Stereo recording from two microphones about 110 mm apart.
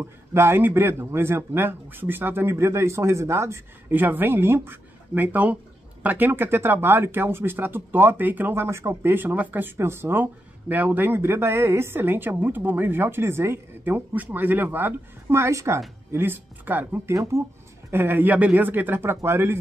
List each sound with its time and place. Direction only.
0.0 s speech: 25° right (ahead or behind)
17.1 s speech: 30° right (ahead or behind)